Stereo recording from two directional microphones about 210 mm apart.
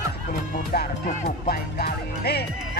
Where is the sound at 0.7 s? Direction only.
45° left (ahead or behind).